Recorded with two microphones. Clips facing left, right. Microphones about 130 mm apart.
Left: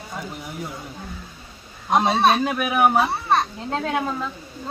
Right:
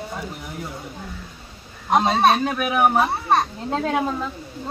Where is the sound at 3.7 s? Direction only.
5° right (ahead or behind).